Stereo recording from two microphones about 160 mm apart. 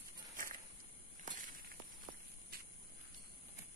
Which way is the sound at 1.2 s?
55° right (ahead or behind).